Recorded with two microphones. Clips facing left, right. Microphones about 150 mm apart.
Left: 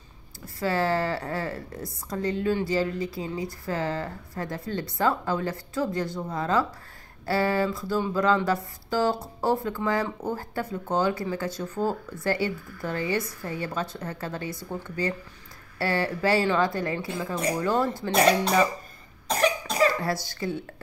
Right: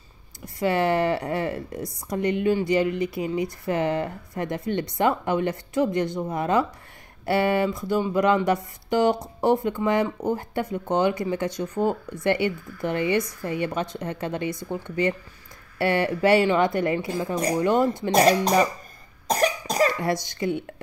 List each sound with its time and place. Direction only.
0.6 s speech: 20° right (ahead or behind)
18.1 s speech: 40° right (ahead or behind)
19.2 s cough: 40° right (ahead or behind)
20.0 s speech: 20° right (ahead or behind)